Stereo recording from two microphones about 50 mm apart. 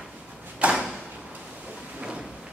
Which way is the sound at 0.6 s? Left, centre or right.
Right.